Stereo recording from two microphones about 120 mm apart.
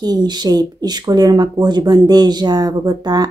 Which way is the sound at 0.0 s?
35° right (ahead or behind).